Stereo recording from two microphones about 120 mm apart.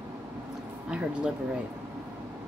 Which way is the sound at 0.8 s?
5° right (ahead or behind).